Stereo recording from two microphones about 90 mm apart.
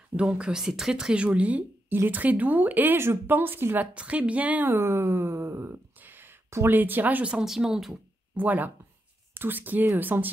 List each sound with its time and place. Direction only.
0.1 s speech: 10° right (ahead or behind)
8.4 s speech: 20° right (ahead or behind)